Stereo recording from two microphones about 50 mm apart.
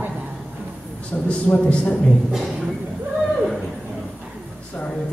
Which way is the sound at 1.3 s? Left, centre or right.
Left.